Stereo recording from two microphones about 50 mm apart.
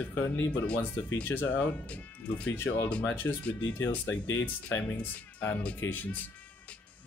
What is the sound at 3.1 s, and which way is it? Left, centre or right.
Speech, left.